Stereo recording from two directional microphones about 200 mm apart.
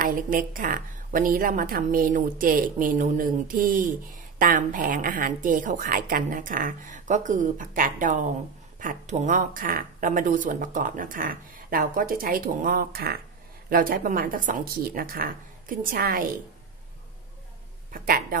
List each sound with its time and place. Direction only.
0.0 s a woman's voice: 45° right (ahead or behind)
17.9 s speech: 45° right (ahead or behind)